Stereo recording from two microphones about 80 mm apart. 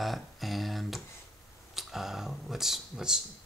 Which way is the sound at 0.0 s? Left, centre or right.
Centre.